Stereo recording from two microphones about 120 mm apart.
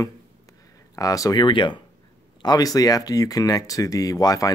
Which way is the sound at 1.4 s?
45° left (ahead or behind).